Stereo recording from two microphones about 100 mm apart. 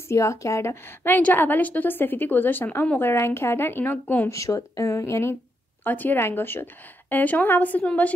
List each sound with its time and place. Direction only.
0.1 s a woman's voice: 30° left (ahead or behind)
4.3 s speech: 35° left (ahead or behind)
5.9 s a woman's voice: 20° left (ahead or behind)